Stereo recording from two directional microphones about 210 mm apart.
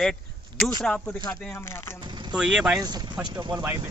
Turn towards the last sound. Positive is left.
turn(degrees=-20)  # may be behind; listen again after turning